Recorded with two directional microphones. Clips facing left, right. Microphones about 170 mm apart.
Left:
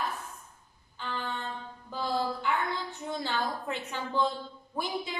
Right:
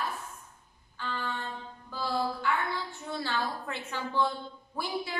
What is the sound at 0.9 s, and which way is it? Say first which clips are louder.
Music: even; 20° left (ahead or behind).